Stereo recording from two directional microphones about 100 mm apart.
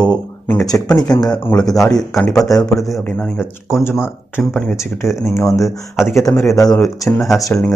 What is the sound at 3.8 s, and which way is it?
Speech, 25° left (ahead or behind).